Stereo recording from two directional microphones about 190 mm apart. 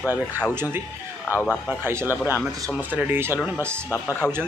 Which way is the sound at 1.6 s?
10° right (ahead or behind).